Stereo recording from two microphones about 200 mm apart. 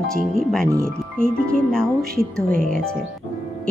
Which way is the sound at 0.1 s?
5° left (ahead or behind).